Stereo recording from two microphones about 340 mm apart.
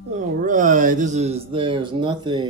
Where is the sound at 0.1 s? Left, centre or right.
Right.